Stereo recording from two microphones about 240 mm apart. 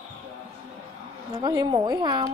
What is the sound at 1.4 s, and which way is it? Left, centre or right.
Speech, centre.